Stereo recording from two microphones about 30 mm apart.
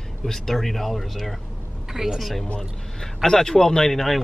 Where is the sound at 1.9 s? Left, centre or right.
Centre.